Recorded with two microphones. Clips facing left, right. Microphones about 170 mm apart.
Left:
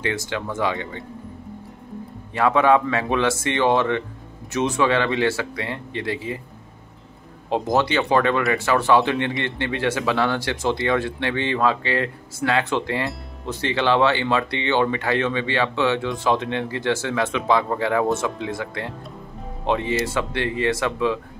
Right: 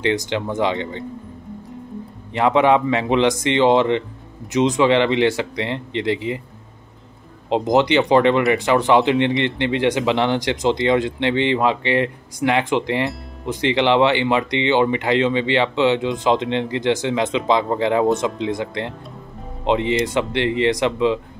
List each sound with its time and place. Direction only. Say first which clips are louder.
0.0 s speech: right 5 dB; 20° right (ahead or behind)
2.3 s speech: right 2 dB; 20° right (ahead or behind)
7.4 s speech: right 4 dB; 20° right (ahead or behind)